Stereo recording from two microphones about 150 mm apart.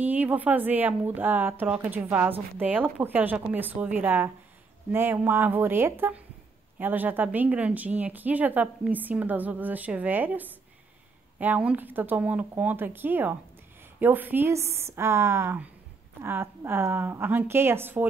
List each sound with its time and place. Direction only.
0.0 s speech: 10° right (ahead or behind)